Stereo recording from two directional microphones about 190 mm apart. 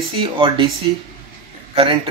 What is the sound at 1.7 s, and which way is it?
Speech, 25° right (ahead or behind).